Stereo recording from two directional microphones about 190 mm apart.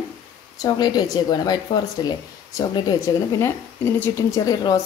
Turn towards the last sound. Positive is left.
turn(degrees=15)  # may be behind; listen again after turning